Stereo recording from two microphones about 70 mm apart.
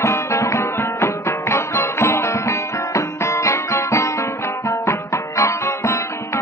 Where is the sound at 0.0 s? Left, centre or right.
Left.